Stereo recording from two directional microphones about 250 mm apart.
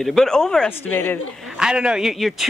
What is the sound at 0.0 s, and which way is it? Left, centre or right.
A man's voice, centre.